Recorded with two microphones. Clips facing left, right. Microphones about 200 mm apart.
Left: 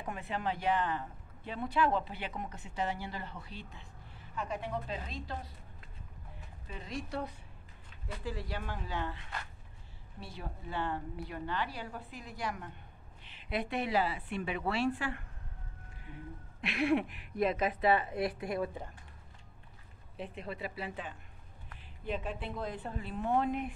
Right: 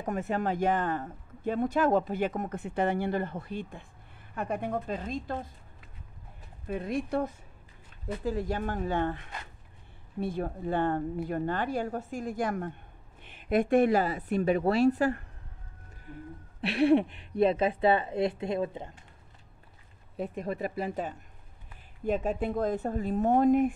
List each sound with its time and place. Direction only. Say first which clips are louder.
0.0 s speech: right 7 dB; 45° right (ahead or behind)
6.7 s speech: right 10 dB; 55° right (ahead or behind)
10.2 s speech: right 13 dB; 50° right (ahead or behind)
16.6 s a woman's voice: right 7 dB; 30° right (ahead or behind)
20.3 s speech: right 8 dB; 45° right (ahead or behind)